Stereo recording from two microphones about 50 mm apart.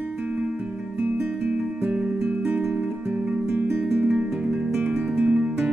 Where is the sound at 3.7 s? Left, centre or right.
Right.